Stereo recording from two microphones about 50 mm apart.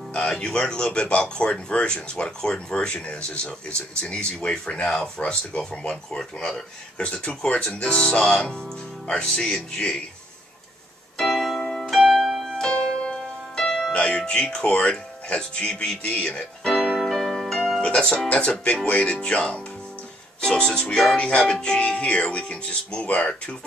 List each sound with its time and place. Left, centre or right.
0.2 s speech: centre
4.9 s speech: centre
5.2 s speech: left
11.1 s keyboard: centre
11.9 s music: centre
12.5 s music: centre
13.9 s speech: left
16.6 s music: centre
18.3 s speech: left